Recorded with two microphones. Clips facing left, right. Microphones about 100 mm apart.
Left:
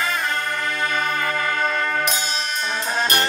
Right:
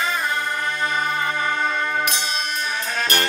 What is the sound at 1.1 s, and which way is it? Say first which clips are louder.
Music: even; 25° right (ahead or behind).